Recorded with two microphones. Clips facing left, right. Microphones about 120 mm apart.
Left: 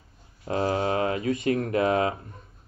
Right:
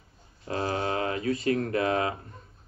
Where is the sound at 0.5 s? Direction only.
25° left (ahead or behind).